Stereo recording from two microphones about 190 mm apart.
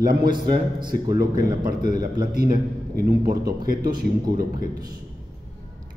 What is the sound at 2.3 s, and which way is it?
A man's voice, 50° right (ahead or behind).